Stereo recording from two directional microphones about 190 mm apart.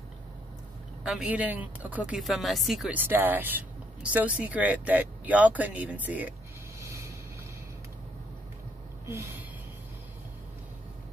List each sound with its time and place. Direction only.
1.0 s speech: 5° right (ahead or behind)
6.8 s vehicle: 15° right (ahead or behind)
9.0 s a sound: 15° right (ahead or behind)